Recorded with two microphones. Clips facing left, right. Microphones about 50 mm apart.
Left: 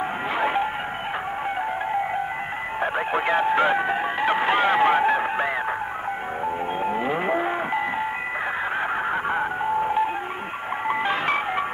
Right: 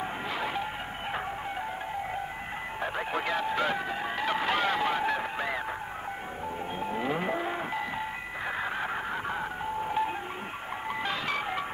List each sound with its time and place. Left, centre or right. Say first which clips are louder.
0.4 s music: left 11 dB; left
2.8 s music: left 8 dB; left
6.8 s vehicle: left 4 dB; left
9.1 s music: left 9 dB; left